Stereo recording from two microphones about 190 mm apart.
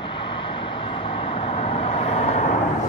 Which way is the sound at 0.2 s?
25° left (ahead or behind).